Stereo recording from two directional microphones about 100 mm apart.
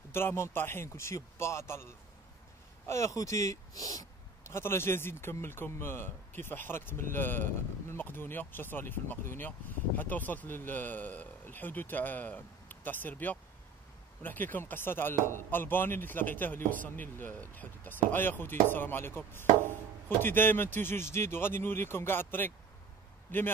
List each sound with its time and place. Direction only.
0.1 s speech: 25° left (ahead or behind)
2.9 s speech: 30° left (ahead or behind)
4.6 s speech: 25° left (ahead or behind)